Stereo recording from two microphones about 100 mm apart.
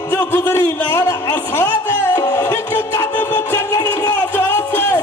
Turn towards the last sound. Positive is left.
turn(degrees=20)  # may be behind; listen again after turning